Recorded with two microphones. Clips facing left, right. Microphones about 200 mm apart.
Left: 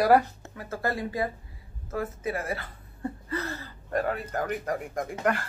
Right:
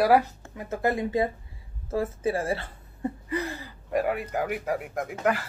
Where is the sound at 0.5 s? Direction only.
20° right (ahead or behind).